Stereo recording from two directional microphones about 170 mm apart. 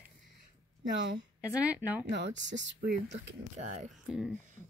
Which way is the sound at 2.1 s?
90° right.